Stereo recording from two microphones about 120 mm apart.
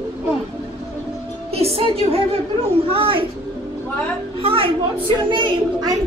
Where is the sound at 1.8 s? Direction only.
55° right (ahead or behind).